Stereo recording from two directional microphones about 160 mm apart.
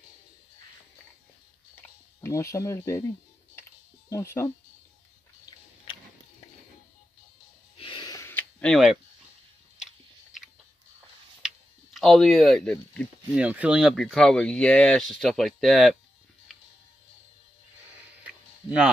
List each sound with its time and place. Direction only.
1.8 s speech: 15° left (ahead or behind)
4.1 s speech: 15° left (ahead or behind)
7.7 s a sound: 35° left (ahead or behind); by 8.7 s 10° left (ahead or behind)
11.9 s speech: centre (ahead or behind)
13.3 s speech: 10° right (ahead or behind)
18.2 s a sound: 10° right (ahead or behind)